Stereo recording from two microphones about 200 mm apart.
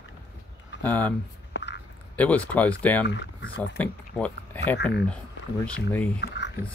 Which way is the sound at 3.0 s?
60° left (ahead or behind).